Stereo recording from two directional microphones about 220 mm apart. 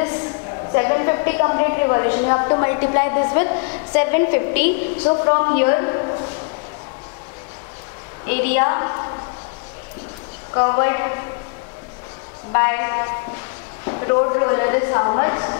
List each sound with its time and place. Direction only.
0.7 s a woman's voice: 20° left (ahead or behind)
8.3 s a woman's voice: 15° left (ahead or behind)
10.5 s a woman's voice: 25° left (ahead or behind)
12.5 s a woman's voice: 15° left (ahead or behind)